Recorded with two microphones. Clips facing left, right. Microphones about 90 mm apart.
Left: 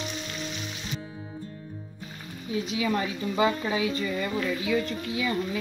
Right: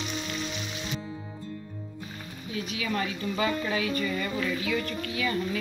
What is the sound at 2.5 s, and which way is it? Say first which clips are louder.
A woman's voice: left 4 dB; 25° left (ahead or behind).